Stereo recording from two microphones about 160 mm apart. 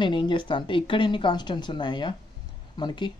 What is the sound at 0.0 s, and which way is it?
Speech, 30° left (ahead or behind).